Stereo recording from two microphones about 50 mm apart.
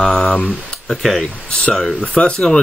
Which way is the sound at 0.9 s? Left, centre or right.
Centre.